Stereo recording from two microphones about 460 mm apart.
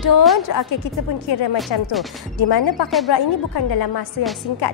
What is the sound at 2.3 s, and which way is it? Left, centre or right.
A woman's voice, left.